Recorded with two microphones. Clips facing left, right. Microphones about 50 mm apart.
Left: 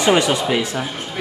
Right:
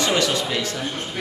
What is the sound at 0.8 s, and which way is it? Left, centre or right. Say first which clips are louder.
Speech: left 1 dB; centre.